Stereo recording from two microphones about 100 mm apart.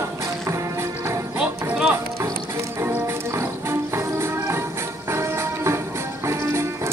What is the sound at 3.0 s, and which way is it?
Music, 25° right (ahead or behind).